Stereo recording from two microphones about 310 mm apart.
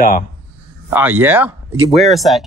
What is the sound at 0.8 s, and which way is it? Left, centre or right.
Speech, centre.